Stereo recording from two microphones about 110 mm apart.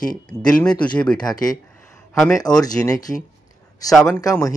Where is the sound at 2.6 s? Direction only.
35° left (ahead or behind).